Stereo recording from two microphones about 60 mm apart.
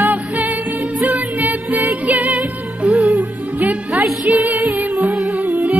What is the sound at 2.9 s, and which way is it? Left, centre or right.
Music, centre.